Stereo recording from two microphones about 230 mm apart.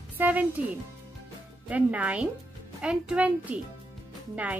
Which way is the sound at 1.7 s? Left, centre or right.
Centre.